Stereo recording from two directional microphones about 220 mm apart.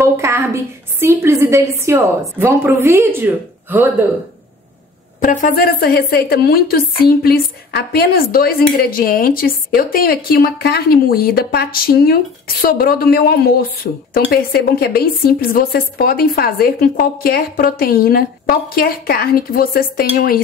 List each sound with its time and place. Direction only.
0.0 s a woman's voice: 10° right (ahead or behind)
5.2 s a woman's voice: 35° left (ahead or behind)